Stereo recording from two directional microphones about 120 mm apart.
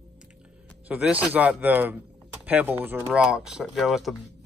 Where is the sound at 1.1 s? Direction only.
15° right (ahead or behind).